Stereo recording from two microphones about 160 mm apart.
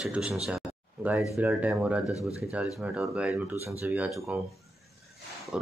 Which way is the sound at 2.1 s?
20° left (ahead or behind).